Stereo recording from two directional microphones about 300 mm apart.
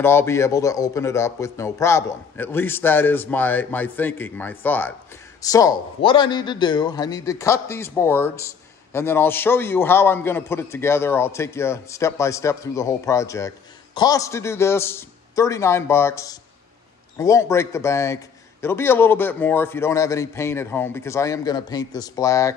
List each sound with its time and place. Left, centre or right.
0.0 s a man's voice: centre